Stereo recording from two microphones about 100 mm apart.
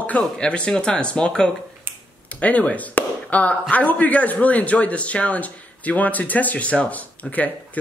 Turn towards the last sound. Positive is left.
turn(degrees=15)  # may be behind; listen again after turning